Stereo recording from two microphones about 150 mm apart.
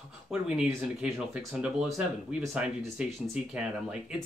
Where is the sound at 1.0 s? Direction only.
5° right (ahead or behind).